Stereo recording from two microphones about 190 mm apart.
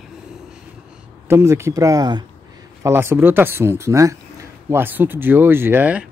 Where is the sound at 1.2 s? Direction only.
15° right (ahead or behind).